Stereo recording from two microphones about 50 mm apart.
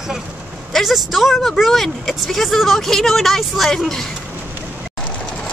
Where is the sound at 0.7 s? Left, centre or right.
Centre.